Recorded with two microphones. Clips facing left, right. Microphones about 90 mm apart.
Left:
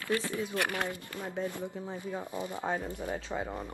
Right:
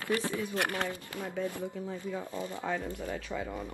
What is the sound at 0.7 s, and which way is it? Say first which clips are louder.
Speech: even; 20° left (ahead or behind).